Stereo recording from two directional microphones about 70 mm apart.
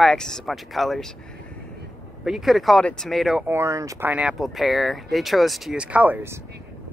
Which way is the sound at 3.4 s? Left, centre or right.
Right.